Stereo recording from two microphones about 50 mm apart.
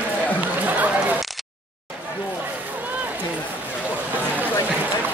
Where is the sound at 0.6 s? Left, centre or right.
Right.